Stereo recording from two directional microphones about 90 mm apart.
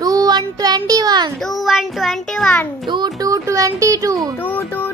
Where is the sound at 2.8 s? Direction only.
60° right (ahead or behind).